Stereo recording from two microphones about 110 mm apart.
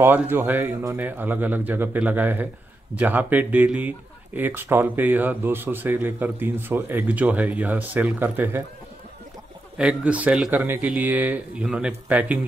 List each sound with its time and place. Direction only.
0.0 s a man's voice: 20° right (ahead or behind)
9.8 s a man's voice: 10° right (ahead or behind)